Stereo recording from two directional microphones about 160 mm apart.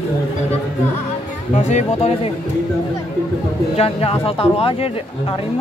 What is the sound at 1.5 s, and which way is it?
Speech, 45° left (ahead or behind).